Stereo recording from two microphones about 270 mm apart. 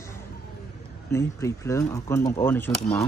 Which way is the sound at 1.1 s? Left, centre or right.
Centre.